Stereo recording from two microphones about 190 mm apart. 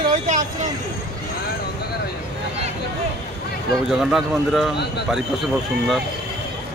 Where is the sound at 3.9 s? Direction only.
Centre (ahead or behind).